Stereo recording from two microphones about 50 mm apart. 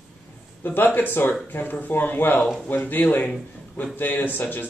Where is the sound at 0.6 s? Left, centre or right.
Left.